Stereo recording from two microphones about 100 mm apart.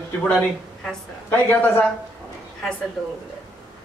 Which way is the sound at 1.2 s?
15° left (ahead or behind).